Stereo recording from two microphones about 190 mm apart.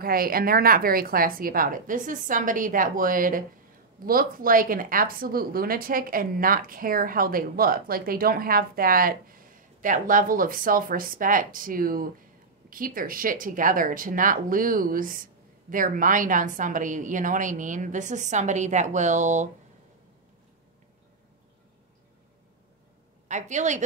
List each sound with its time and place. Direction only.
0.0 s a woman's voice: 50° right (ahead or behind)
23.2 s a woman's voice: 40° right (ahead or behind)